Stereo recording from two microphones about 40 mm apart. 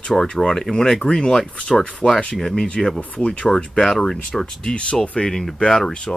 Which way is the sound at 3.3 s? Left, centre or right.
Left.